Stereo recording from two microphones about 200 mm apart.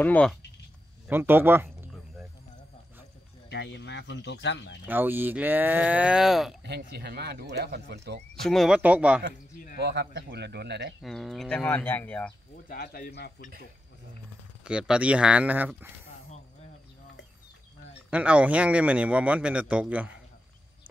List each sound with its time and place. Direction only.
0.0 s speech: 5° left (ahead or behind)
1.0 s speech: 10° right (ahead or behind)
3.4 s speech: 60° left (ahead or behind)
4.8 s a man's voice: 10° right (ahead or behind)
6.6 s speech: 55° right (ahead or behind)
8.4 s speech: centre (ahead or behind)
9.8 s speech: 55° right (ahead or behind)
11.0 s speech: centre (ahead or behind)
12.6 s speech: 50° left (ahead or behind)
14.6 s a man's voice: 5° right (ahead or behind)
18.1 s a man's voice: 5° right (ahead or behind)